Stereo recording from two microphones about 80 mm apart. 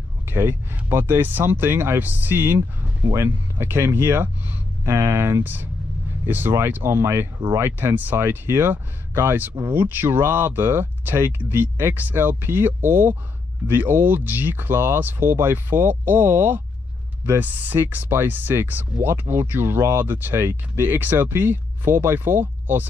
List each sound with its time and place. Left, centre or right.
0.3 s speech: right